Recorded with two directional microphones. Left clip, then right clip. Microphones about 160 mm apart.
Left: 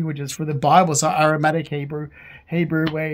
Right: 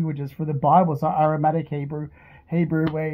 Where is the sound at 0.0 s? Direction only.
25° left (ahead or behind).